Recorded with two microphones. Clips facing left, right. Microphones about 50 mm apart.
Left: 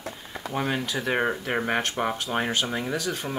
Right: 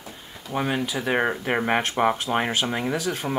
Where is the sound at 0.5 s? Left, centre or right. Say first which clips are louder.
Right 2 dB; centre.